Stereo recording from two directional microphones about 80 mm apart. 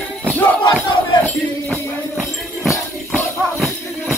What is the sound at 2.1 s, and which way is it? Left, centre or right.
Music, centre.